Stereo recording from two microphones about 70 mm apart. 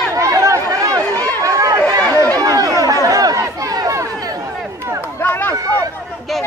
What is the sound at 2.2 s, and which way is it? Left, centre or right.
Chatter, right.